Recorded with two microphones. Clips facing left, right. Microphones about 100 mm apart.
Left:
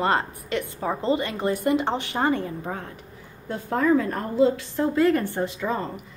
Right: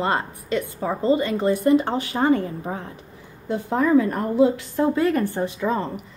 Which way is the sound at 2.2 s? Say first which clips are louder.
Right 5 dB; 15° right (ahead or behind).